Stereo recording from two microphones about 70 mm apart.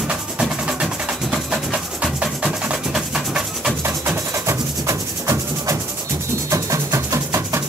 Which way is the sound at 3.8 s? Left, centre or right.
Right.